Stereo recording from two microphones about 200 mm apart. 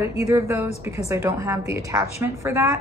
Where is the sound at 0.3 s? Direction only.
15° right (ahead or behind).